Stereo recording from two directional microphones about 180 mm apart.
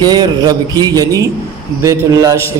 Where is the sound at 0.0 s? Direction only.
25° right (ahead or behind).